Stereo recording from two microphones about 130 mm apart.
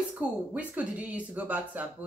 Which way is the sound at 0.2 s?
10° right (ahead or behind).